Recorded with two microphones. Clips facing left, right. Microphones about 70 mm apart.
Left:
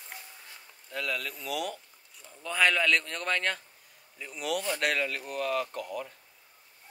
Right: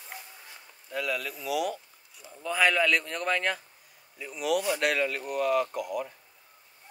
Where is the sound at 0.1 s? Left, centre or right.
Centre.